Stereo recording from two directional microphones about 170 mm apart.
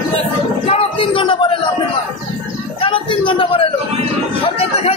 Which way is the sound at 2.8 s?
30° left (ahead or behind).